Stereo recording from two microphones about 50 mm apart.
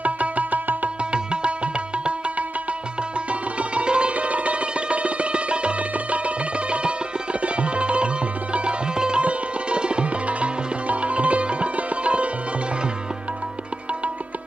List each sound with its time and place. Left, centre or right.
0.0 s music: right
1.1 s music: right
3.3 s sitar: right
7.4 s music: right
8.5 s sitar: centre